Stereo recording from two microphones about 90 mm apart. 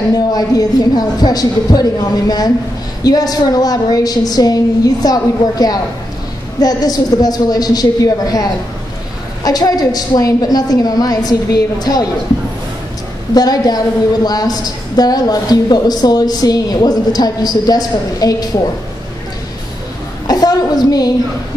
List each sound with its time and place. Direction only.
0.1 s a woman's voice: 45° left (ahead or behind)
13.3 s a woman's voice: 45° left (ahead or behind)
20.2 s a woman's voice: 45° left (ahead or behind)